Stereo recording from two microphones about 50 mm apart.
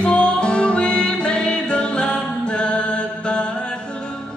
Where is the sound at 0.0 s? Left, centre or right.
Centre.